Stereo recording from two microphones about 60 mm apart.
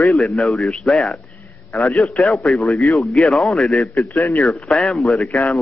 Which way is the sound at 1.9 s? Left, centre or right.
Left.